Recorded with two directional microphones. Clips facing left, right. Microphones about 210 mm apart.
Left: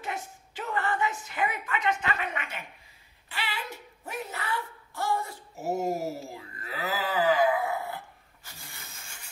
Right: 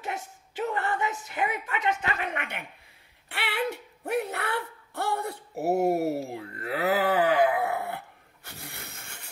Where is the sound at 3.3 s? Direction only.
60° right (ahead or behind).